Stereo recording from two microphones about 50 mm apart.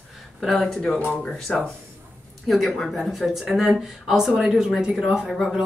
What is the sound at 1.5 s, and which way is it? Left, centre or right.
Speech, centre.